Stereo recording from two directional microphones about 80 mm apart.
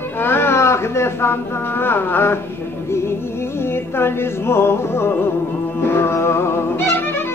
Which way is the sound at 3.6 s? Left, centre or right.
Left.